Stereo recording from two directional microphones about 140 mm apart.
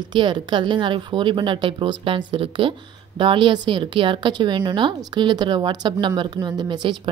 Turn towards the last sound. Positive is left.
turn(degrees=-35)  # may be behind; listen again after turning